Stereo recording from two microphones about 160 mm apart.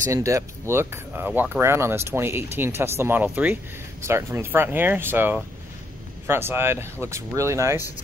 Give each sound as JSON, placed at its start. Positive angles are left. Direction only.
{"t": 0.0, "sound": "speech", "side_deg": -20}